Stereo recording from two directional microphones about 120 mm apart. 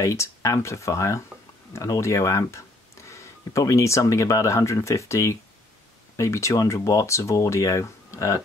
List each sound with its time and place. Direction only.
0.0 s speech: 25° left (ahead or behind)